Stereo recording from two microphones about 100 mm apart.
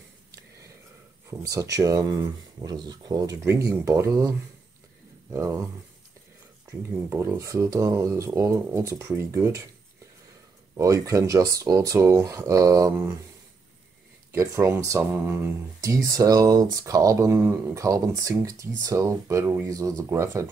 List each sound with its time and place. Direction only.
1.5 s speech: 35° right (ahead or behind)
7.0 s speech: 25° right (ahead or behind)
10.8 s speech: 35° right (ahead or behind)
14.3 s speech: 30° right (ahead or behind)